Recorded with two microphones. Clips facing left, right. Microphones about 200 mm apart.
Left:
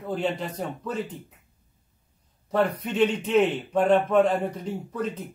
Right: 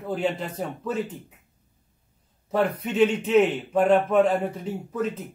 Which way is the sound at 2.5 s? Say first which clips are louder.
Even; 5° right (ahead or behind).